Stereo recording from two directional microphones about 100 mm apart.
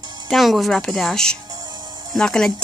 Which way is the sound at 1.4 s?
40° right (ahead or behind).